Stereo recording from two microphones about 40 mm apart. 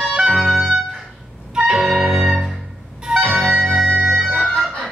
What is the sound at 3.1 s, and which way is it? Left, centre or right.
Music, right.